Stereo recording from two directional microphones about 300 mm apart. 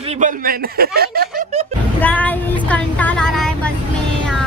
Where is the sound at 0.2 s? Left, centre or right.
Right.